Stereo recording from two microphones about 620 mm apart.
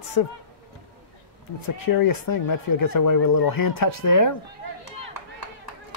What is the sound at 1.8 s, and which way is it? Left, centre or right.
Speech, left.